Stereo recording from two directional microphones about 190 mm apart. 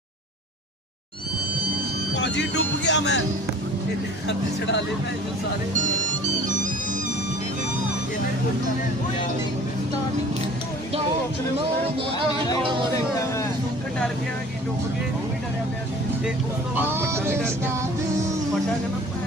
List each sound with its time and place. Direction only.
2.1 s music: 65° left (ahead or behind)
4.3 s speech: 65° left (ahead or behind)
16.7 s music: 10° right (ahead or behind)